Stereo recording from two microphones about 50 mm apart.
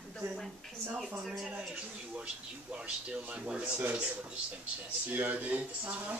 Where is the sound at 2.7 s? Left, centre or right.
Right.